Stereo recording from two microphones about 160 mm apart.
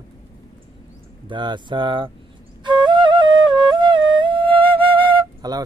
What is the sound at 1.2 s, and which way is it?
Speech, 30° right (ahead or behind).